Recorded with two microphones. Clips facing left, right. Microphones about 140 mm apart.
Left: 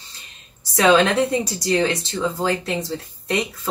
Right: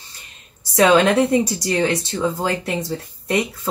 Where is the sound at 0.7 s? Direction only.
15° right (ahead or behind).